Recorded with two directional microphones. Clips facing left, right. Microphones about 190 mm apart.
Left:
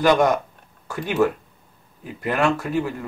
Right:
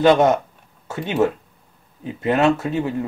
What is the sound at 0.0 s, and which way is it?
Speech, 25° right (ahead or behind).